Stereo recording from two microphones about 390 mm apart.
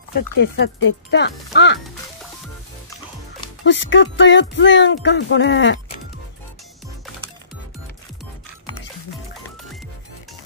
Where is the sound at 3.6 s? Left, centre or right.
Left.